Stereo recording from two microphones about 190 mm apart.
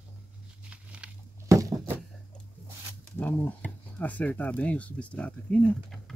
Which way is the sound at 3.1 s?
10° left (ahead or behind).